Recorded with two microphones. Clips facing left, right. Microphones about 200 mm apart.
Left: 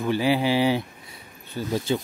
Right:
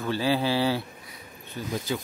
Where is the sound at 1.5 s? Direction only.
30° left (ahead or behind).